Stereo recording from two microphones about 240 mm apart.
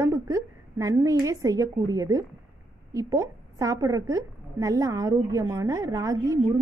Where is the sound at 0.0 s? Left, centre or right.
Centre.